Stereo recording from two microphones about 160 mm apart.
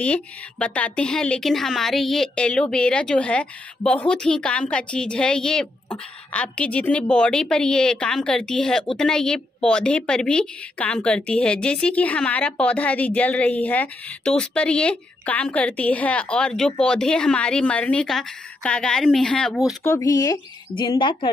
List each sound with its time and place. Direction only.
0.0 s a woman's voice: 10° left (ahead or behind)
19.8 s speech: 20° left (ahead or behind)